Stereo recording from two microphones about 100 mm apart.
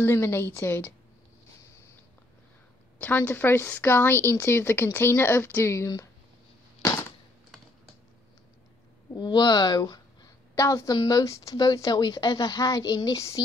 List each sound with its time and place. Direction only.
0.0 s speech: 25° left (ahead or behind)
3.0 s speech: 20° left (ahead or behind)
6.8 s a sound: 30° left (ahead or behind)
9.1 s speech: 45° left (ahead or behind)
10.5 s a woman's voice: 30° left (ahead or behind)
11.5 s a woman's voice: 45° left (ahead or behind)